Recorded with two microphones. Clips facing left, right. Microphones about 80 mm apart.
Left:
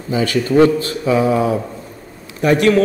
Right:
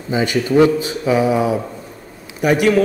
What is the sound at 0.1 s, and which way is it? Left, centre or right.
A man's voice, centre.